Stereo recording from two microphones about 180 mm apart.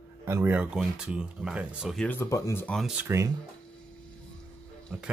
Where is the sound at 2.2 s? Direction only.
15° left (ahead or behind).